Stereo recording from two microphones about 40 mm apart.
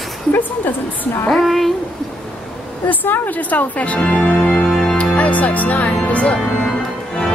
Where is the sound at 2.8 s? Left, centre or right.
Left.